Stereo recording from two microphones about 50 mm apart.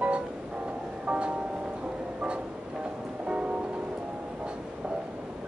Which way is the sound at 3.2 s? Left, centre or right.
Right.